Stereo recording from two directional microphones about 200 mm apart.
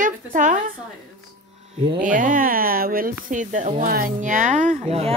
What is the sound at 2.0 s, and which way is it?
Speech, 45° right (ahead or behind).